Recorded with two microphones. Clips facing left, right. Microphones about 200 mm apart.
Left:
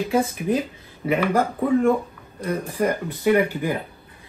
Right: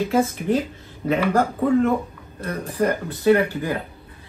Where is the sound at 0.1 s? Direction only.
10° left (ahead or behind).